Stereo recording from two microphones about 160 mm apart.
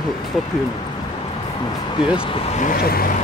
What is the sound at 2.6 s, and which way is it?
Speech, 65° left (ahead or behind).